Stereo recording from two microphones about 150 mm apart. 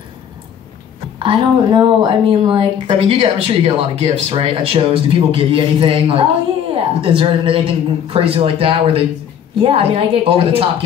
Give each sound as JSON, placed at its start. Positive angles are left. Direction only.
{"t": 1.2, "sound": "speech", "side_deg": -35}